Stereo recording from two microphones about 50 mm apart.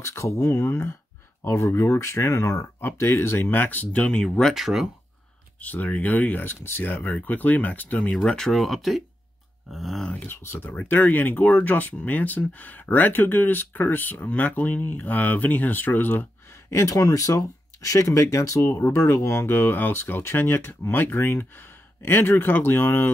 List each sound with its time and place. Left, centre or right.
0.0 s speech: left
3.9 s speech: centre
4.6 s speech: centre
5.6 s speech: left
8.3 s speech: centre
10.3 s speech: left
10.9 s speech: left
16.4 s speech: left
19.0 s speech: left
21.4 s speech: left